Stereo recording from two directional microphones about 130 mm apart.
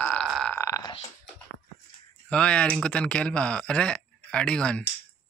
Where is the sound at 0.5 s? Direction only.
20° left (ahead or behind).